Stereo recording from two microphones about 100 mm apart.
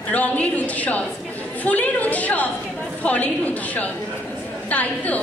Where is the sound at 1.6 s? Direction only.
15° left (ahead or behind).